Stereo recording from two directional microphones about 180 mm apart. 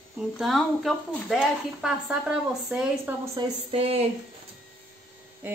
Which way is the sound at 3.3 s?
30° right (ahead or behind).